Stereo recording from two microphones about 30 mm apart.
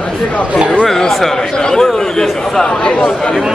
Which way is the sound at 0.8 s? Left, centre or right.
Centre.